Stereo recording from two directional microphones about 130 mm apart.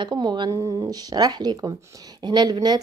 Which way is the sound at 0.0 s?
35° right (ahead or behind).